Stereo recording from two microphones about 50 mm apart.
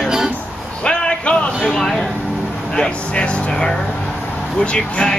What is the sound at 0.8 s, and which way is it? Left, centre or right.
Speech, centre.